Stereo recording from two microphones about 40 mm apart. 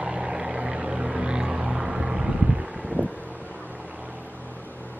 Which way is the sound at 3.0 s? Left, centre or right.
Right.